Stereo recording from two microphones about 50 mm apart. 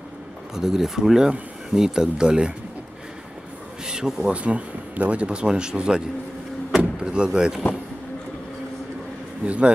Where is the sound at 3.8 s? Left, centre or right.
Centre.